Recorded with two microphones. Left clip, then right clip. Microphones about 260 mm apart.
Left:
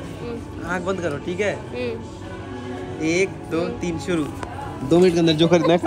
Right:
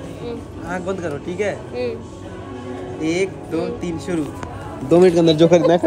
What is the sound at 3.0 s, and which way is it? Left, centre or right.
Speech, centre.